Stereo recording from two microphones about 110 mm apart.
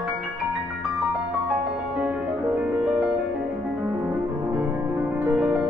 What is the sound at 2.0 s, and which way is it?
Music, 10° right (ahead or behind).